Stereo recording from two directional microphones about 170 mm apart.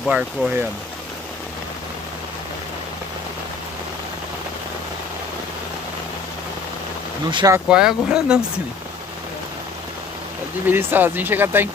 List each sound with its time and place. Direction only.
0.0 s speech: centre (ahead or behind)
7.2 s speech: 30° right (ahead or behind)
7.5 s speech: 5° right (ahead or behind)
10.7 s speech: 10° right (ahead or behind)